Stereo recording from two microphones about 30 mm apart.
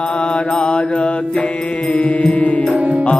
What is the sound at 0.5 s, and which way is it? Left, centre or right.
Mantra, left.